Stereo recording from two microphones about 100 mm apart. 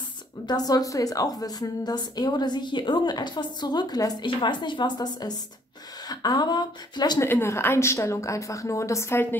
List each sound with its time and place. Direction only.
0.5 s a woman's voice: 40° left (ahead or behind)
7.2 s a woman's voice: 25° left (ahead or behind)